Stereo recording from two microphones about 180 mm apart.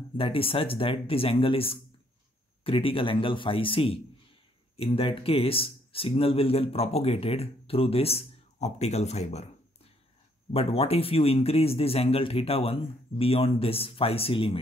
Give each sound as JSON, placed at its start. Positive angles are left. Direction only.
{"t": 0.2, "sound": "speech", "side_deg": 30}
{"t": 10.5, "sound": "speech", "side_deg": 35}